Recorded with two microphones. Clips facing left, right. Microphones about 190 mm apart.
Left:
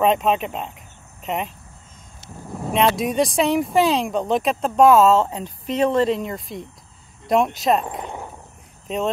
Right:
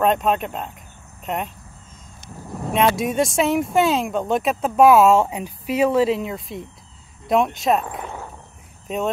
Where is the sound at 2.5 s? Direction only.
Centre (ahead or behind).